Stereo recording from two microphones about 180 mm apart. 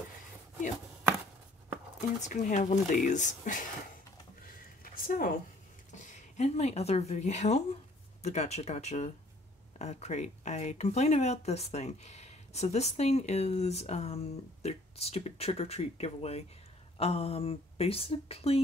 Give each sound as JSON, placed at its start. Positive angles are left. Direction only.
{"t": 2.2, "sound": "speech", "side_deg": 45}
{"t": 4.8, "sound": "a sound", "side_deg": 50}
{"t": 5.9, "sound": "speech", "side_deg": 40}